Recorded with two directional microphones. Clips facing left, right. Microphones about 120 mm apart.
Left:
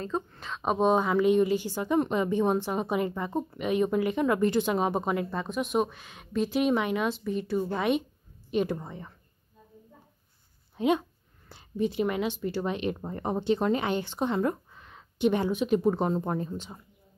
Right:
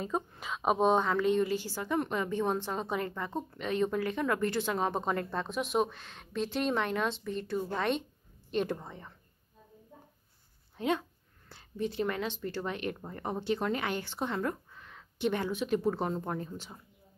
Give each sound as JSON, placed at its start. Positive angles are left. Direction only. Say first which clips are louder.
{"t": 0.0, "sound": "a woman's voice", "louder": "left 2 dB", "side_deg": -10}
{"t": 10.8, "sound": "speech", "louder": "left 6 dB", "side_deg": 15}